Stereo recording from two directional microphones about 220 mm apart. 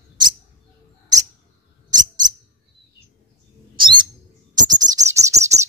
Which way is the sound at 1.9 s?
20° right (ahead or behind).